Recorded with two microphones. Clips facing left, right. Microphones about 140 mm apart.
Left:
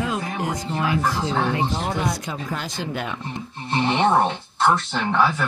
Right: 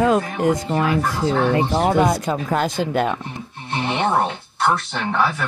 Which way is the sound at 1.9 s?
55° right (ahead or behind).